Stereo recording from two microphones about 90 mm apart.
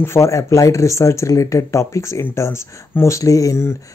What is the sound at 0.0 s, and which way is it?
Speech, 30° left (ahead or behind).